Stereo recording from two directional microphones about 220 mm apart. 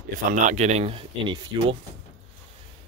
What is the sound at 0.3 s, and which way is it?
Speech, 30° right (ahead or behind).